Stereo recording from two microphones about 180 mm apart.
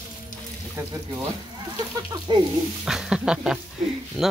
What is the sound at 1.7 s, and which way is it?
Speech, 25° right (ahead or behind).